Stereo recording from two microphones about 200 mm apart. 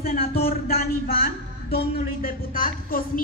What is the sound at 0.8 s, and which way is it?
A woman's voice, 50° left (ahead or behind).